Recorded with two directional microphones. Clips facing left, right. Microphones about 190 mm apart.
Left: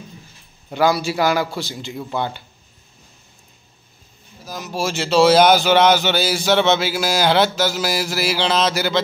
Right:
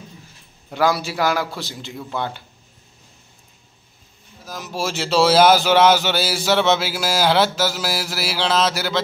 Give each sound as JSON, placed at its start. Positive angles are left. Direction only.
{"t": 0.7, "sound": "speech", "side_deg": 0}
{"t": 4.5, "sound": "speech", "side_deg": 0}